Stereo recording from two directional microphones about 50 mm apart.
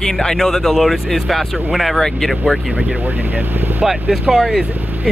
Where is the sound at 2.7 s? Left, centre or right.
Right.